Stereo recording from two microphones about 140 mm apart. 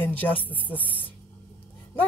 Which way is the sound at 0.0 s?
15° left (ahead or behind).